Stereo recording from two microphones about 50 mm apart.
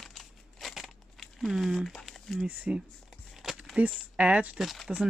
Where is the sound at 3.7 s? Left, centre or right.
Right.